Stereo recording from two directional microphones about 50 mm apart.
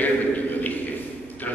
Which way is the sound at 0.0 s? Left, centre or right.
Left.